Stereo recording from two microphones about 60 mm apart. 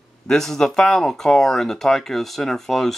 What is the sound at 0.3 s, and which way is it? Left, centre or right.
Speech, centre.